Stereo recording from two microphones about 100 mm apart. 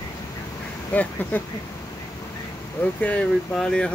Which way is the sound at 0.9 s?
15° left (ahead or behind).